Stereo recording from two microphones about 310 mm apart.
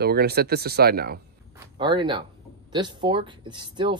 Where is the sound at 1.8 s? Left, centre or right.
Centre.